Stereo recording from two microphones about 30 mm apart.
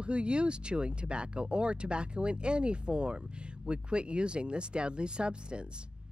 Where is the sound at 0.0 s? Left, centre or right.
Right.